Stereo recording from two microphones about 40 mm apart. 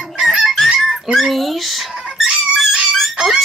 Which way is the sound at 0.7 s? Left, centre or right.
Centre.